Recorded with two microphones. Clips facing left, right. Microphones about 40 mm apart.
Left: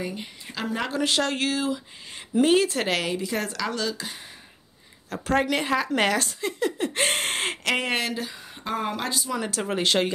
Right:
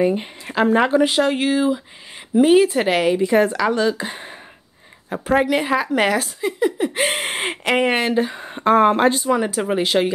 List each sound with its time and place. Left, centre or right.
0.0 s speech: right
1.0 s speech: centre; by 4.3 s right
5.1 s speech: centre; by 9.4 s right
9.4 s speech: centre